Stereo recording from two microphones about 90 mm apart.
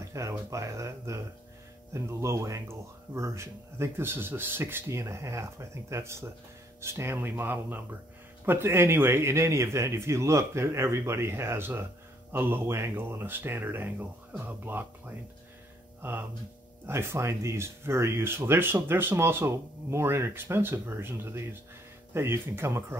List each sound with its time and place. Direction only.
0.1 s speech: 35° right (ahead or behind)
16.0 s hum: 25° right (ahead or behind)
16.8 s speech: 30° right (ahead or behind)